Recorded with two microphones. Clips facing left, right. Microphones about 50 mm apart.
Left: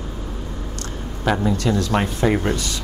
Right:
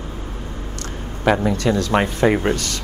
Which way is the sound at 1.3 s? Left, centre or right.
Centre.